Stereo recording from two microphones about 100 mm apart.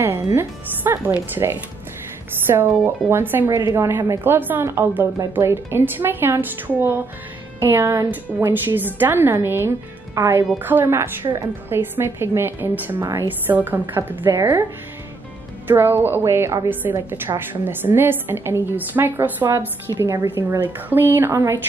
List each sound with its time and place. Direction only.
0.0 s a woman's voice: 25° right (ahead or behind)
15.6 s a woman's voice: 20° right (ahead or behind)